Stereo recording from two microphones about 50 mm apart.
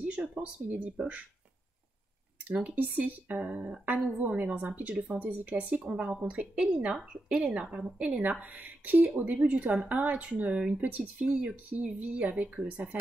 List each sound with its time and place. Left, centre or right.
0.4 s a woman's voice: right
2.4 s a woman's voice: right